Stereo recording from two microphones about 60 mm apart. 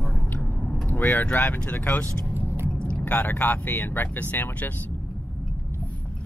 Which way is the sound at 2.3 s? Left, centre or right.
Right.